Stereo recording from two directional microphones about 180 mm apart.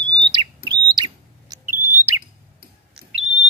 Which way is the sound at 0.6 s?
25° right (ahead or behind).